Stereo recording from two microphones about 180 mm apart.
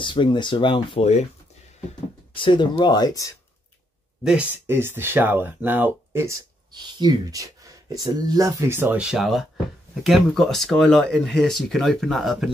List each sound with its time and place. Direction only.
0.0 s speech: 25° left (ahead or behind)
2.3 s speech: 25° left (ahead or behind)
4.2 s speech: 5° right (ahead or behind)